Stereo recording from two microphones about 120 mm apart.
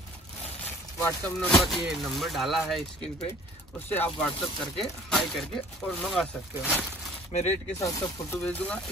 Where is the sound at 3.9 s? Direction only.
15° left (ahead or behind).